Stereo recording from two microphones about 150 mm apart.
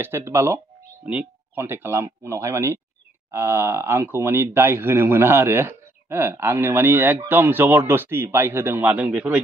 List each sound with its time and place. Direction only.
0.0 s speech: 15° right (ahead or behind)